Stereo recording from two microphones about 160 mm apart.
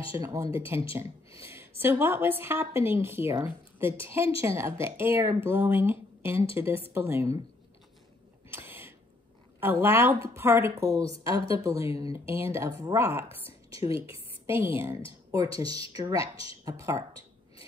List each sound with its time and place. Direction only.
0.1 s a woman's voice: 20° right (ahead or behind)
8.5 s a sound: 15° right (ahead or behind)
9.6 s a woman's voice: 15° right (ahead or behind)